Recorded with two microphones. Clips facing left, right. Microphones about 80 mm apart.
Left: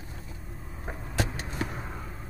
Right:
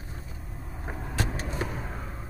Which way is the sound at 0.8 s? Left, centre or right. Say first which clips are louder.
Even; centre.